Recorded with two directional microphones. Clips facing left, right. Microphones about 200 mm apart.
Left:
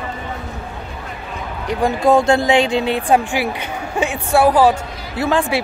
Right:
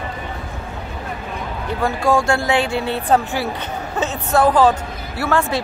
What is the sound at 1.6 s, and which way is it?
A woman's voice, 15° left (ahead or behind).